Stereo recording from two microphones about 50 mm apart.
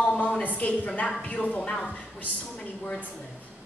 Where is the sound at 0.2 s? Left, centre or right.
Left.